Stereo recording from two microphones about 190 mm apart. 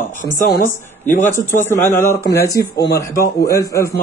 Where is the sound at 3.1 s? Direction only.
50° left (ahead or behind).